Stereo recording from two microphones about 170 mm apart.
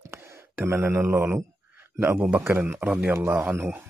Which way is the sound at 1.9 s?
15° right (ahead or behind).